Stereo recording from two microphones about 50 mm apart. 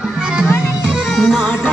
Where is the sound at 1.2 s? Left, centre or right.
Centre.